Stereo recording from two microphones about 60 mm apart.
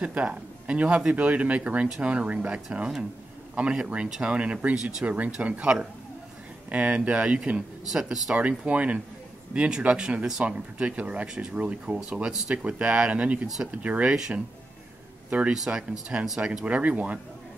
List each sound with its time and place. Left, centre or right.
0.0 s speech: right
8.3 s speech: right
15.2 s speech: right
15.5 s speech: centre